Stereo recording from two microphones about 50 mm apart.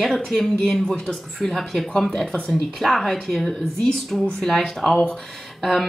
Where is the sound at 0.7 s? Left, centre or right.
Centre.